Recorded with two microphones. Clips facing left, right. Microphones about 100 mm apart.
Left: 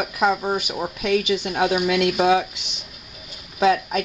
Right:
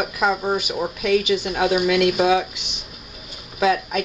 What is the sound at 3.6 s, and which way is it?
Speech, 30° left (ahead or behind).